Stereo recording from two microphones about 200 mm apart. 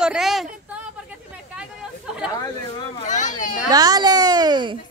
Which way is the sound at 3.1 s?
40° left (ahead or behind).